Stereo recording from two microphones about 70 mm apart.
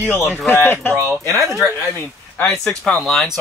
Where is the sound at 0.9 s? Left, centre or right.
Right.